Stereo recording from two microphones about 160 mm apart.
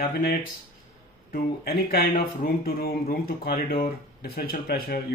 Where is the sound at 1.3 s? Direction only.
75° left (ahead or behind).